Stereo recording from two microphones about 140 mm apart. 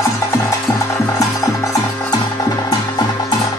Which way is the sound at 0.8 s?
25° left (ahead or behind).